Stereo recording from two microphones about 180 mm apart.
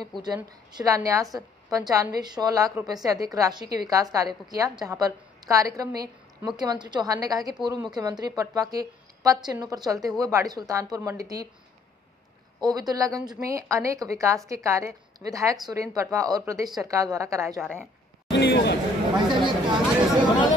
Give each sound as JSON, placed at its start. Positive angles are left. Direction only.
{"t": 0.7, "sound": "a woman's voice", "side_deg": -20}
{"t": 12.6, "sound": "a woman's voice", "side_deg": -20}
{"t": 18.3, "sound": "a man's voice", "side_deg": 70}
{"t": 19.1, "sound": "a woman's voice", "side_deg": -25}